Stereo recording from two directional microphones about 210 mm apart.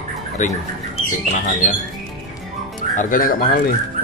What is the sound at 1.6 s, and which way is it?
Speech, 35° left (ahead or behind).